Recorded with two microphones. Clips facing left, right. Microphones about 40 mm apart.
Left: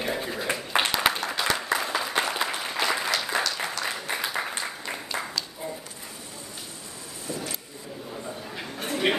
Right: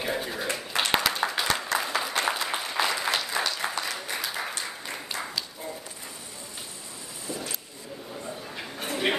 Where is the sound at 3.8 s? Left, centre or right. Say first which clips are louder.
Left 3 dB; centre.